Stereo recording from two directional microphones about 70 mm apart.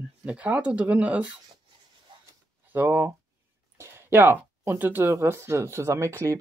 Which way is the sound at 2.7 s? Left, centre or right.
Right.